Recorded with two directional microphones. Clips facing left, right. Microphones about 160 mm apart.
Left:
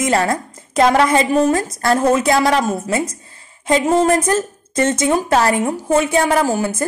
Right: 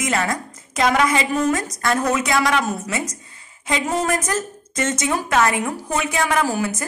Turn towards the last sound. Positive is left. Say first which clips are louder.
# left 4 dB
turn(degrees=30)  # may be behind; listen again after turning